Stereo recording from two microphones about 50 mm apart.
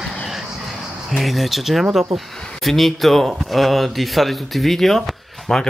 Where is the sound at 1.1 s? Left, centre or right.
Centre.